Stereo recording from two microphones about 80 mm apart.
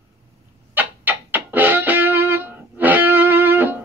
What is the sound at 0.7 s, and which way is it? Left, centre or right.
Music, right.